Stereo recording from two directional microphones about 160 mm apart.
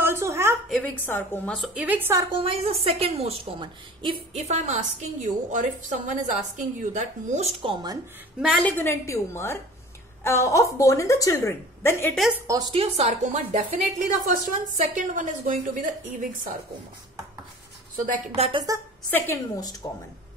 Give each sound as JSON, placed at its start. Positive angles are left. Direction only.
{"t": 0.0, "sound": "a sound", "side_deg": -15}
{"t": 0.7, "sound": "a woman's voice", "side_deg": 0}
{"t": 1.6, "sound": "a woman's voice", "side_deg": -10}
{"t": 2.3, "sound": "a woman's voice", "side_deg": -35}
{"t": 7.7, "sound": "a woman's voice", "side_deg": -25}
{"t": 8.6, "sound": "a woman's voice", "side_deg": 15}
{"t": 12.4, "sound": "a woman's voice", "side_deg": -25}
{"t": 12.8, "sound": "a woman's voice", "side_deg": -40}
{"t": 18.0, "sound": "a woman's voice", "side_deg": -55}
{"t": 18.4, "sound": "a woman's voice", "side_deg": -30}
{"t": 19.0, "sound": "a woman's voice", "side_deg": 15}